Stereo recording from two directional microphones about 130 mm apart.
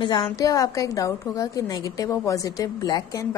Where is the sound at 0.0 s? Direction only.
35° left (ahead or behind).